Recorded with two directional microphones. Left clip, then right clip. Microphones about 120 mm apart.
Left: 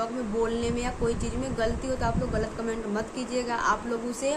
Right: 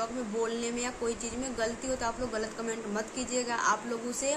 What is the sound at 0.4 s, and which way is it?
A woman's voice, 5° right (ahead or behind).